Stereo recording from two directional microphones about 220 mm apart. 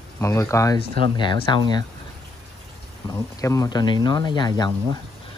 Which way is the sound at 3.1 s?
15° left (ahead or behind).